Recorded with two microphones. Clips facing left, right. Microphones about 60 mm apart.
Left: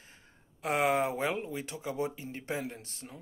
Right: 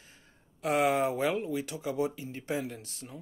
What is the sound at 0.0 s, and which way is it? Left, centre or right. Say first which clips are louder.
Speech: left 1 dB; left.